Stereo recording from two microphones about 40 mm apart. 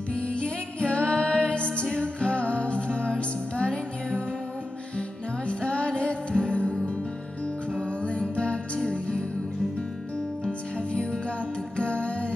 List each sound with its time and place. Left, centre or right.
0.1 s music: left
5.5 s music: left
8.0 s music: left
10.9 s music: left